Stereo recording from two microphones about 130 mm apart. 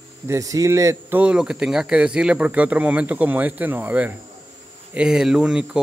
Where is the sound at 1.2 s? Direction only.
5° right (ahead or behind).